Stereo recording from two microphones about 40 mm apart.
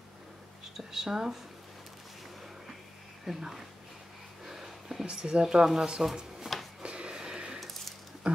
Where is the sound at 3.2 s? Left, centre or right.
Centre.